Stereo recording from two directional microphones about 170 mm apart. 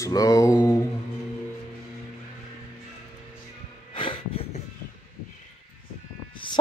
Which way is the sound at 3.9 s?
30° left (ahead or behind).